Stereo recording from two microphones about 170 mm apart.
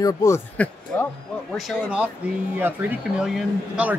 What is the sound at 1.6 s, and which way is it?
Speech, 5° right (ahead or behind).